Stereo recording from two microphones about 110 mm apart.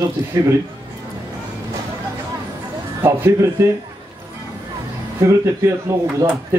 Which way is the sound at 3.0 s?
25° right (ahead or behind).